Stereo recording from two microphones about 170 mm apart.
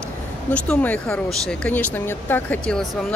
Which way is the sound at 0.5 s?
5° left (ahead or behind).